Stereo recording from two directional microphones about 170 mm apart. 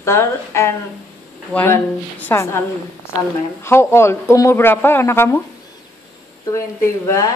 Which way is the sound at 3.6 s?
15° left (ahead or behind).